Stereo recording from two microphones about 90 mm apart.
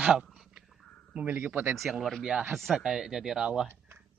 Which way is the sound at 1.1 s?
20° right (ahead or behind).